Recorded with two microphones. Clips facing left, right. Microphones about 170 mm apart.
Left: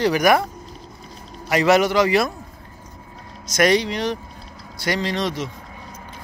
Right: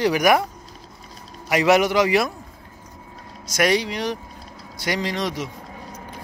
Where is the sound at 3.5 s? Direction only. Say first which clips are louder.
Left 3 dB; 10° right (ahead or behind).